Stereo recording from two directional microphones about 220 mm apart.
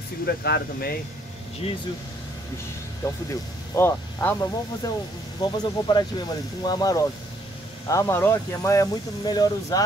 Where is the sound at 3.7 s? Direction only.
10° left (ahead or behind).